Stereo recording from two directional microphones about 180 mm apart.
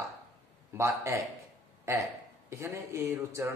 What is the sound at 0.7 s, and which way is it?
Speech, 15° right (ahead or behind).